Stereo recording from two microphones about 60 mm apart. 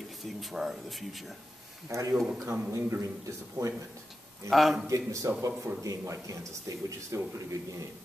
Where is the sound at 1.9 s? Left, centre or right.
Right.